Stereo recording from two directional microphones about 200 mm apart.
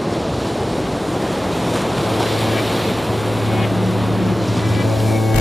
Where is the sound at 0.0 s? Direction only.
Centre (ahead or behind).